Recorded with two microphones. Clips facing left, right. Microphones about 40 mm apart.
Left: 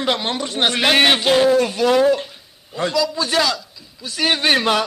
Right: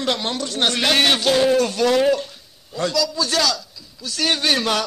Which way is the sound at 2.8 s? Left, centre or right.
Left.